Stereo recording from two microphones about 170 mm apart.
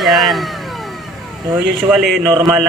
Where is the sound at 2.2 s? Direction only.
20° right (ahead or behind).